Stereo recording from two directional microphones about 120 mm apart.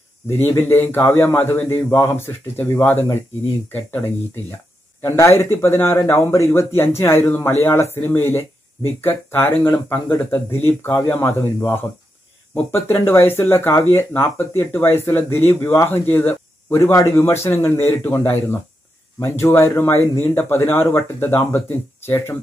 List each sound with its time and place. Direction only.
0.3 s speech: 20° left (ahead or behind)
5.0 s speech: 20° left (ahead or behind)